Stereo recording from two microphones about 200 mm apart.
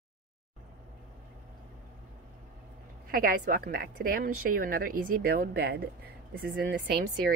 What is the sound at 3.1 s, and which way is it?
Speech, 45° right (ahead or behind).